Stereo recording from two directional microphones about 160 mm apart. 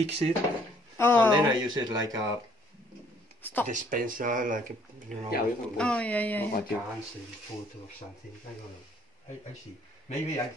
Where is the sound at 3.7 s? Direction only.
60° right (ahead or behind).